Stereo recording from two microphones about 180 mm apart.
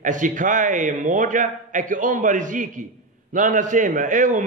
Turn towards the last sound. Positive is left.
turn(degrees=-45)  # may be behind; listen again after turning